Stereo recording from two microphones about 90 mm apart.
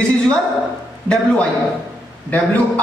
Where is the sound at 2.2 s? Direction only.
15° left (ahead or behind).